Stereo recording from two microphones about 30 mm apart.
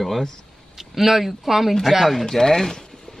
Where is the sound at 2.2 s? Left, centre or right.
Centre.